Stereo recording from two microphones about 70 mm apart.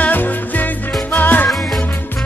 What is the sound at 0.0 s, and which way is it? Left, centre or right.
Music, left.